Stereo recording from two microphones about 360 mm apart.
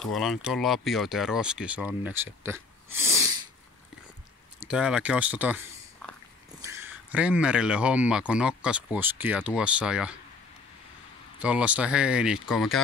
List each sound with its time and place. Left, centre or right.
0.0 s speech: centre
4.6 s speech: centre
11.3 s speech: centre